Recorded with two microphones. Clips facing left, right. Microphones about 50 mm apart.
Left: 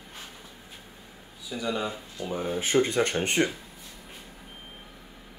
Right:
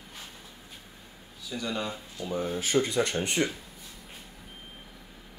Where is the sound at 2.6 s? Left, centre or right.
Left.